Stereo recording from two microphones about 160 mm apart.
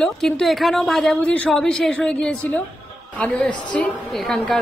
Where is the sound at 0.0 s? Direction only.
Centre (ahead or behind).